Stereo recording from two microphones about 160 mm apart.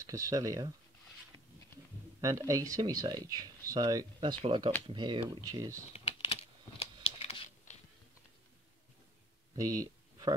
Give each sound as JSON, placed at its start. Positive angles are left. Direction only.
{"t": 0.0, "sound": "speech", "side_deg": -20}
{"t": 2.2, "sound": "speech", "side_deg": -20}
{"t": 5.9, "sound": "typing", "side_deg": 40}
{"t": 6.8, "sound": "crumpling", "side_deg": 40}
{"t": 9.6, "sound": "a sound", "side_deg": -20}